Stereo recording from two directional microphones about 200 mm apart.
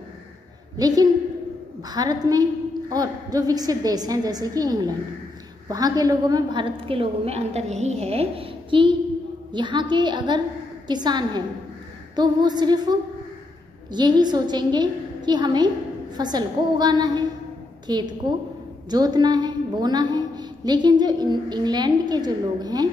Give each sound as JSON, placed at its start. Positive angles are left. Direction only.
{"t": 0.7, "sound": "a woman's voice", "side_deg": -20}
{"t": 13.9, "sound": "a woman's voice", "side_deg": -20}